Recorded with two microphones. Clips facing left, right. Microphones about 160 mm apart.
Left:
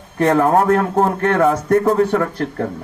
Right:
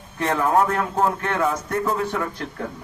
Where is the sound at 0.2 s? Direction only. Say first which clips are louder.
Left 6 dB; 50° left (ahead or behind).